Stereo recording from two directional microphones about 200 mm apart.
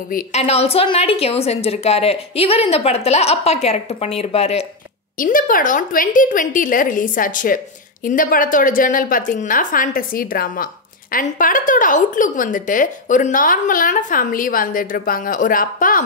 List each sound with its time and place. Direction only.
0.1 s a woman's voice: 35° left (ahead or behind)
5.2 s a woman's voice: 45° left (ahead or behind)